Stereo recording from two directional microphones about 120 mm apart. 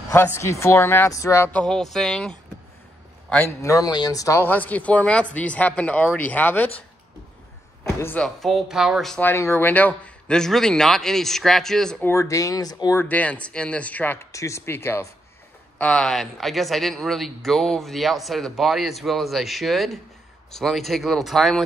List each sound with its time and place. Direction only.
0.4 s speech: 25° left (ahead or behind)
1.5 s speech: 5° left (ahead or behind)
3.4 s speech: 25° left (ahead or behind)
8.2 s speech: centre (ahead or behind)
9.2 s speech: 20° left (ahead or behind); by 12.0 s 5° left (ahead or behind)
12.0 s speech: 25° left (ahead or behind)
13.0 s speech: 10° left (ahead or behind)
14.3 s speech: 25° left (ahead or behind)
15.8 s speech: 10° left (ahead or behind)